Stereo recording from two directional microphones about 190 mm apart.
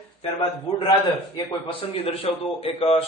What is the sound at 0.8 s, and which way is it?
A man's voice, 25° left (ahead or behind).